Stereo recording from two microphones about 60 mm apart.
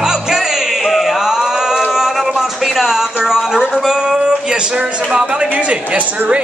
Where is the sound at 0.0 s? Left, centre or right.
Centre.